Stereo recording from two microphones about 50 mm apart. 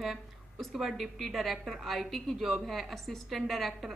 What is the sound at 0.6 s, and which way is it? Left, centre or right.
A woman's voice, centre.